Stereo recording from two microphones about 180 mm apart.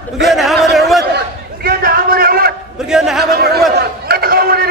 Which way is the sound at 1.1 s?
55° right (ahead or behind).